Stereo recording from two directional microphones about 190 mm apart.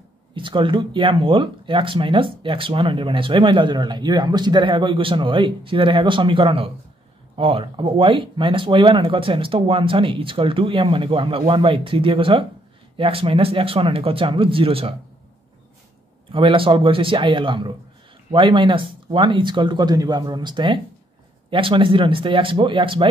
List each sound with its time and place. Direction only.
0.3 s speech: 25° right (ahead or behind)
16.3 s speech: 25° right (ahead or behind)